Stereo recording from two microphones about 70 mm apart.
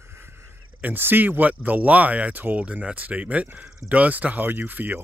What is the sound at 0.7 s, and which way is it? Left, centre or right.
Speech, right.